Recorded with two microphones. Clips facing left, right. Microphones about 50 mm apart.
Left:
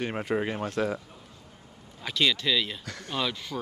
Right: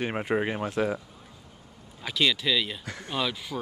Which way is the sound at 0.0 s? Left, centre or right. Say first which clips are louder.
Right 1 dB; centre.